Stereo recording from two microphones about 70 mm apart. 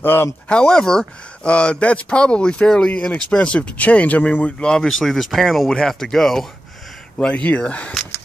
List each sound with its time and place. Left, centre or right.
0.0 s speech: left
0.5 s speech: centre
7.2 s speech: centre